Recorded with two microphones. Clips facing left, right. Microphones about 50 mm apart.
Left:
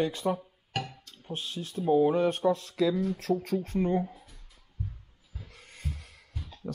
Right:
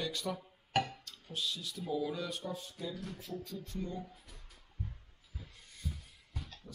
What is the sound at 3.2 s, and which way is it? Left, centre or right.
Speech, left.